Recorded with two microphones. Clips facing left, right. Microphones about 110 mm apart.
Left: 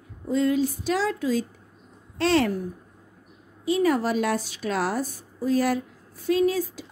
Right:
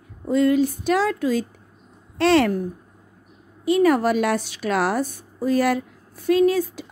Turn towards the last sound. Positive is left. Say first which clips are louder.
# right 4 dB
turn(degrees=-60)  # may be behind; listen again after turning